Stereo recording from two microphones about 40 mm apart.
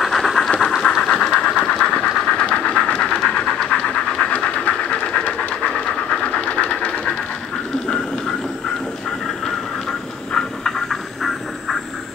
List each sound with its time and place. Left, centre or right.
0.0 s a sound: centre
1.0 s train: left
2.2 s vehicle: left
3.0 s a sound: left
5.9 s train: left
10.9 s vehicle: centre